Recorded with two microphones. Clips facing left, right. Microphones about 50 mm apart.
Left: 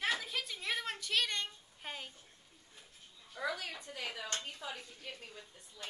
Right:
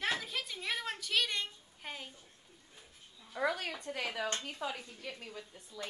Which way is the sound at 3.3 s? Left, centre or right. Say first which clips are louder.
Right 5 dB; right.